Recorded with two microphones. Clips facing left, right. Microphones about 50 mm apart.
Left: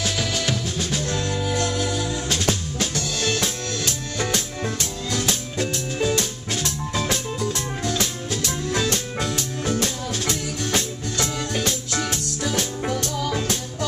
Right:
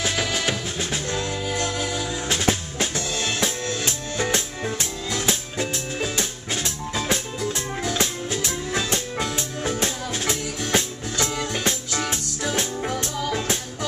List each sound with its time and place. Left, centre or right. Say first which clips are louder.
0.0 s music: right 1 dB; centre